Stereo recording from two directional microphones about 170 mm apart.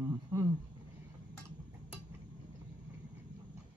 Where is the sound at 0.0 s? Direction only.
20° right (ahead or behind).